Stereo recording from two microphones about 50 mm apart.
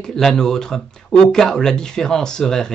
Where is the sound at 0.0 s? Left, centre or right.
Centre.